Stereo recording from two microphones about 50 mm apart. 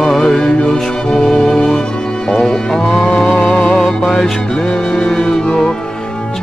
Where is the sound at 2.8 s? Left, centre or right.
Centre.